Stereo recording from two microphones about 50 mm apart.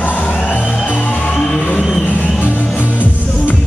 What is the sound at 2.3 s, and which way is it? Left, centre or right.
Music, left.